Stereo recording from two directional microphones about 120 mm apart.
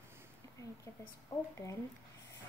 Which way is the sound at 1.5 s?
25° left (ahead or behind).